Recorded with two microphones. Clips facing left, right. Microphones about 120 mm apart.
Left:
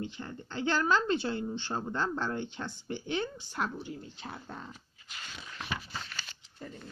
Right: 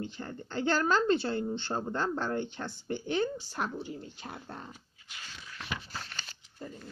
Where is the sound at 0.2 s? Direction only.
45° right (ahead or behind).